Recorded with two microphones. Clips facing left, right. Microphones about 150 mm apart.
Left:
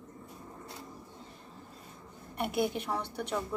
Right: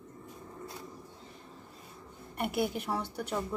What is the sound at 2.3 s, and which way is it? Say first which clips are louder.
Speech: left 1 dB; 5° right (ahead or behind).